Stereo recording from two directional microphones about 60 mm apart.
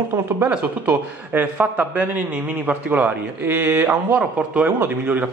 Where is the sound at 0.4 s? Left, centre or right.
Right.